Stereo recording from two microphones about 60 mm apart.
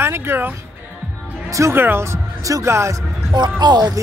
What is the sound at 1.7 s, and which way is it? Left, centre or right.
A man's voice, right.